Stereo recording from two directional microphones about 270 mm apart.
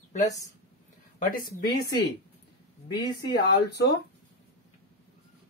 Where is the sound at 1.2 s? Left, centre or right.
Left.